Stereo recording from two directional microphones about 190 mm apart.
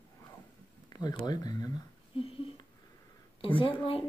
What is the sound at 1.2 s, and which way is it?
Speech, 20° left (ahead or behind).